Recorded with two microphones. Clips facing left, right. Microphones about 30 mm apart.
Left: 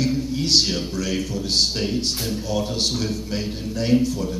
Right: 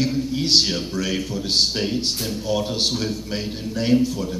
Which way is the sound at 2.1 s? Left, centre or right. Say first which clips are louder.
Even; centre.